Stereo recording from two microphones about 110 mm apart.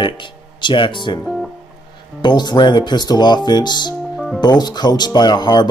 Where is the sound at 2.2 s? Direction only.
45° left (ahead or behind).